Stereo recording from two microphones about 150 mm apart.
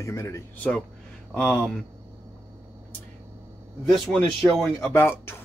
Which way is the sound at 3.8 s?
Centre (ahead or behind).